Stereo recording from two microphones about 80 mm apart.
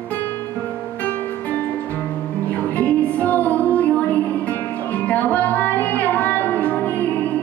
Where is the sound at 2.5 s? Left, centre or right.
Centre.